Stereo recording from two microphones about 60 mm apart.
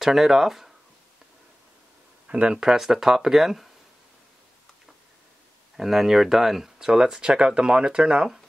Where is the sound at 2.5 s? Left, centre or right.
Centre.